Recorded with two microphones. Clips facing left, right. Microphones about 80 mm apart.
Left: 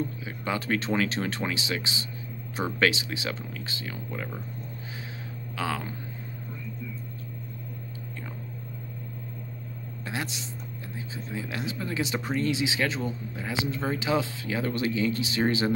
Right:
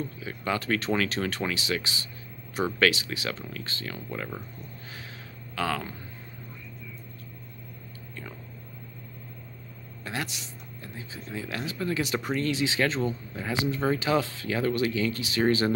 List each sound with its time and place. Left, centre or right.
0.2 s speech: centre
5.6 s speech: centre
10.0 s speech: left